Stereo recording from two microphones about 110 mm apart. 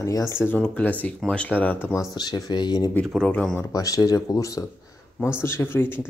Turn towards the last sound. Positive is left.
turn(degrees=20)  # may be behind; listen again after turning